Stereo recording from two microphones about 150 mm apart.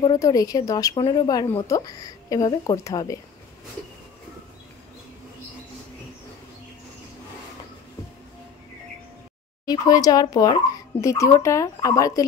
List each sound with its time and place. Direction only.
0.0 s a child's voice: 25° left (ahead or behind)
9.7 s a child's voice: 25° left (ahead or behind)